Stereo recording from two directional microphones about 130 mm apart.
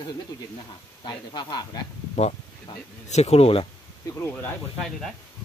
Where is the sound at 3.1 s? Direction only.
55° left (ahead or behind).